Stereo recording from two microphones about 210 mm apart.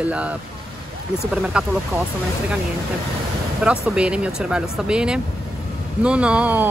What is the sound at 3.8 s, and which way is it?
Speech, 5° right (ahead or behind).